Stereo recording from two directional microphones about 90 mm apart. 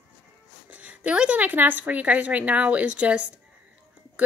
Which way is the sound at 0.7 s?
15° right (ahead or behind).